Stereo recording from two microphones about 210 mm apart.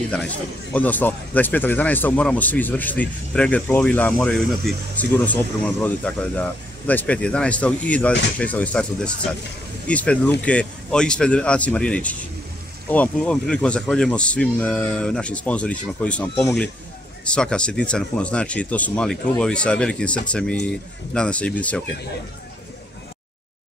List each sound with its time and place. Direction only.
0.7 s speech: 10° left (ahead or behind)